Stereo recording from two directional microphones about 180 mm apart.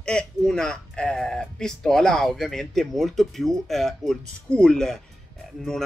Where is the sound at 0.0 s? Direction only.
5° left (ahead or behind).